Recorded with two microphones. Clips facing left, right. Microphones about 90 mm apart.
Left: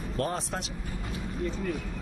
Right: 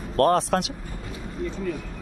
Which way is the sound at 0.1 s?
70° right (ahead or behind).